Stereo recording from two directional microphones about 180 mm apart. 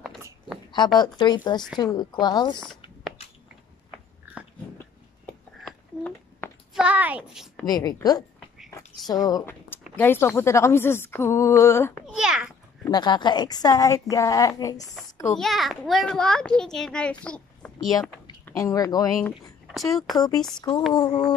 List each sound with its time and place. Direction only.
0.9 s a woman's voice: 25° left (ahead or behind)
5.6 s a sound: 5° left (ahead or behind)
6.8 s a child's voice: 10° right (ahead or behind)
7.6 s a woman's voice: 20° left (ahead or behind)
12.1 s babbling: 5° right (ahead or behind)
12.8 s a woman's voice: 25° left (ahead or behind)
15.0 s a sound: 20° left (ahead or behind)
15.3 s a child's voice: centre (ahead or behind)
17.2 s a sound: 5° left (ahead or behind)
18.4 s speech: 15° left (ahead or behind)
19.7 s speech: centre (ahead or behind)
20.2 s a woman's voice: 20° left (ahead or behind)